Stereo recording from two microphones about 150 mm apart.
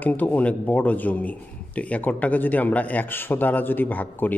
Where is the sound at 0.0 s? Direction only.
10° left (ahead or behind).